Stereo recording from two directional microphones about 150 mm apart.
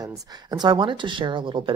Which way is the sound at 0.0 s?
30° right (ahead or behind).